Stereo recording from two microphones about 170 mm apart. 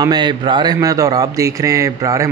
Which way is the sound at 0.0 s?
25° right (ahead or behind).